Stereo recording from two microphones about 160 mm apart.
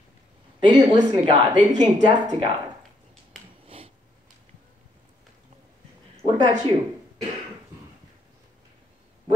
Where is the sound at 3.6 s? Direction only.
35° right (ahead or behind).